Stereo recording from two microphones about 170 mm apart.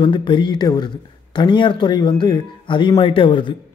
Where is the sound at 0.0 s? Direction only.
30° left (ahead or behind).